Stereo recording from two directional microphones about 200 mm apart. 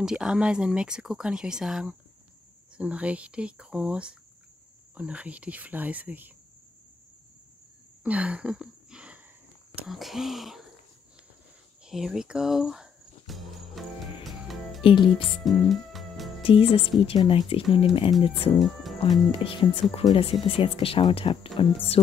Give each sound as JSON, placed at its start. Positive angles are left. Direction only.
{"t": 0.0, "sound": "speech", "side_deg": -5}
{"t": 8.0, "sound": "a sound", "side_deg": -5}
{"t": 9.8, "sound": "speech", "side_deg": 0}
{"t": 11.8, "sound": "a sound", "side_deg": 0}
{"t": 14.8, "sound": "speech", "side_deg": 25}
{"t": 15.4, "sound": "music", "side_deg": 0}
{"t": 16.4, "sound": "speech", "side_deg": 25}
{"t": 18.5, "sound": "speech", "side_deg": 0}
{"t": 19.3, "sound": "speech", "side_deg": 25}